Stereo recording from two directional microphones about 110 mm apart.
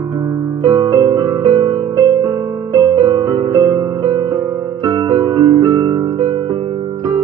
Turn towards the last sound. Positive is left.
turn(degrees=-40)  # may be behind; listen again after turning